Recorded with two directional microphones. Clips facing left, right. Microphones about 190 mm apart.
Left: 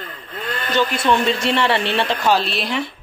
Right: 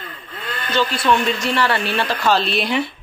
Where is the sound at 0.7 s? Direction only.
25° left (ahead or behind).